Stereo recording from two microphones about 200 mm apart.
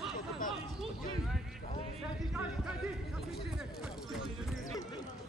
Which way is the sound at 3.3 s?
Centre (ahead or behind).